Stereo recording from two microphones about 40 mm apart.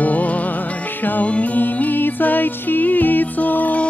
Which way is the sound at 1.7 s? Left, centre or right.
Left.